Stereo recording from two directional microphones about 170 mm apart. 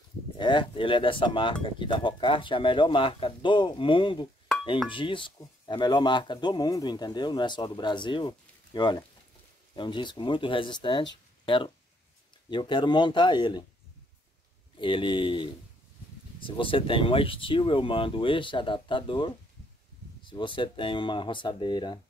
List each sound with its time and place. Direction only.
0.4 s speech: 30° left (ahead or behind)
14.8 s speech: 30° left (ahead or behind)